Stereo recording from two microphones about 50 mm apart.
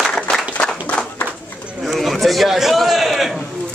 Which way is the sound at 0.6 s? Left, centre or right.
Centre.